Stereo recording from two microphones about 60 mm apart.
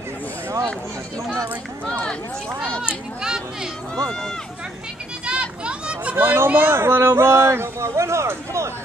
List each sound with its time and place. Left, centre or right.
3.2 s speech: centre
5.2 s children playing: centre
6.1 s speech: right
6.7 s speech: right